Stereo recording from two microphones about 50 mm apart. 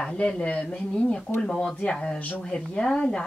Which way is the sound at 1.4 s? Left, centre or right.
Centre.